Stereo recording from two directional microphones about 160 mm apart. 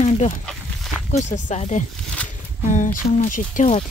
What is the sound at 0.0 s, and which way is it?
Walk, 50° left (ahead or behind).